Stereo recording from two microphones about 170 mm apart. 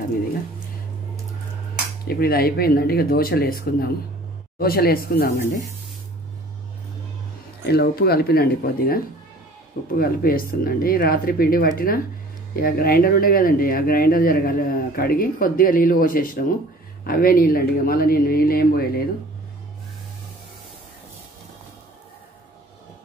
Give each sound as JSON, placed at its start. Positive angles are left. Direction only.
{"t": 2.0, "sound": "speech", "side_deg": 65}
{"t": 7.6, "sound": "speech", "side_deg": 70}